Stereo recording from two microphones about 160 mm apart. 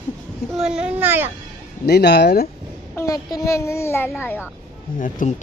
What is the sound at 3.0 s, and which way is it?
A child's voice, 20° left (ahead or behind).